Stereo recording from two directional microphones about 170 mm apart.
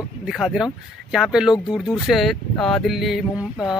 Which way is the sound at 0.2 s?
5° right (ahead or behind).